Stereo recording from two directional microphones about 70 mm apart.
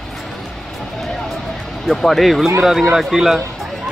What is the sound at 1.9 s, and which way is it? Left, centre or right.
Speech, centre.